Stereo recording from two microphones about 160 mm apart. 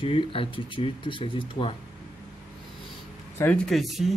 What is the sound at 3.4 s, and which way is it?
Speech, 5° left (ahead or behind).